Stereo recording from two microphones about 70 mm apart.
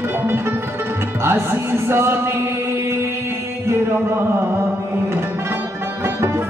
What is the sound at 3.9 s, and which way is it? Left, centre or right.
Music, right.